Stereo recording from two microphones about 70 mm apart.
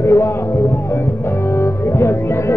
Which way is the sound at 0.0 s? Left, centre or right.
Left.